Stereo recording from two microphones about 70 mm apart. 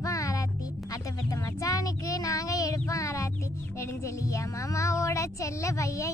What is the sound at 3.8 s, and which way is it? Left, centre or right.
Music, left.